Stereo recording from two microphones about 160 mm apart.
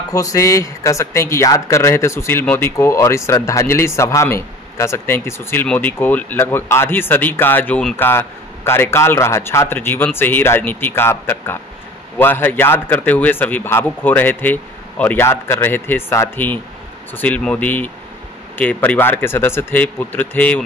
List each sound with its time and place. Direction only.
0.1 s a man's voice: 20° left (ahead or behind)